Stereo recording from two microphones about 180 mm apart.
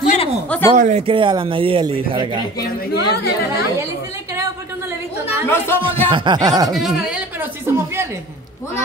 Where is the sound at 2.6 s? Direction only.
60° left (ahead or behind).